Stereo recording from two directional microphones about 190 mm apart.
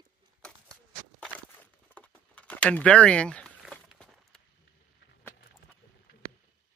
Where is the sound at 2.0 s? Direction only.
5° left (ahead or behind).